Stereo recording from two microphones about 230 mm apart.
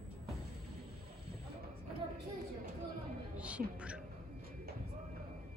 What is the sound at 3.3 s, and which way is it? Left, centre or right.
Music, centre.